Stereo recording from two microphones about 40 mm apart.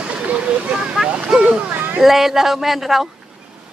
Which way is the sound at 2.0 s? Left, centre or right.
Centre.